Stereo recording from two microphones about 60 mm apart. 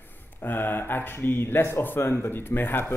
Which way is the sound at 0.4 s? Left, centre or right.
Left.